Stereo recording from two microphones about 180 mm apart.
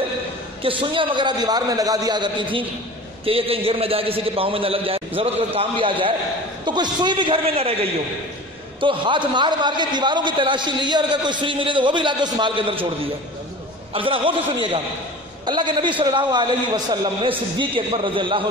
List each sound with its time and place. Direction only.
0.6 s a man's voice: 30° right (ahead or behind)
13.9 s a man's voice: 30° right (ahead or behind)